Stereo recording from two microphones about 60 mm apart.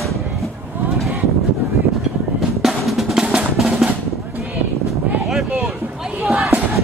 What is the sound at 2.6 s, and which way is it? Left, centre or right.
Drum, centre.